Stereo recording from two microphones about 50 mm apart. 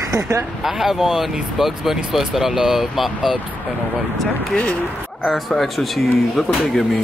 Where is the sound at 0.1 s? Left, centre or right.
Right.